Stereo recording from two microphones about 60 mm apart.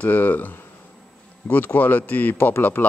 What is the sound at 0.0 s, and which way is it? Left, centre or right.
A man's voice, left.